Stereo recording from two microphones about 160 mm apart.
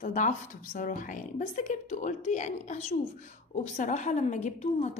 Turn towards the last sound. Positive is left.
turn(degrees=45)  # may be behind; listen again after turning